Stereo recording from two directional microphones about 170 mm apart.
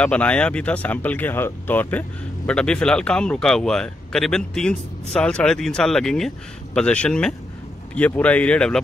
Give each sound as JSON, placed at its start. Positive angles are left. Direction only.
{"t": 0.0, "sound": "speech", "side_deg": 5}